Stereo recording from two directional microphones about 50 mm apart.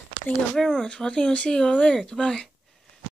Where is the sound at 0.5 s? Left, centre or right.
Centre.